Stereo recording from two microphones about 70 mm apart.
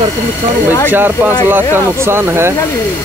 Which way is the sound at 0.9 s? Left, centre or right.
Right.